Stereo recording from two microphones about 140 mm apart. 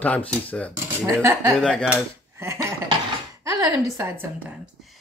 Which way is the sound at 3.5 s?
25° right (ahead or behind).